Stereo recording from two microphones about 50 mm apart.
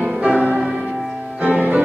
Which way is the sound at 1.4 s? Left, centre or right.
Right.